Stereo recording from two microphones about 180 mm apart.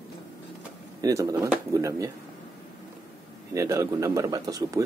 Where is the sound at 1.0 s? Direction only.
20° right (ahead or behind).